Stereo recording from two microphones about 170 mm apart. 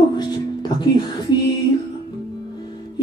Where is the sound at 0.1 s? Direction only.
25° left (ahead or behind).